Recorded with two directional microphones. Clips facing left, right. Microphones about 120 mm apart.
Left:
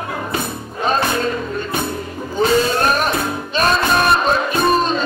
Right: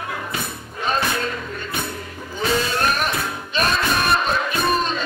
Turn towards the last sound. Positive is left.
turn(degrees=35)  # may be behind; listen again after turning